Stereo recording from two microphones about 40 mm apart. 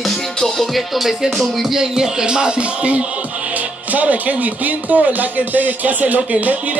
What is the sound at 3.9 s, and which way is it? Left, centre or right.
Speech, right.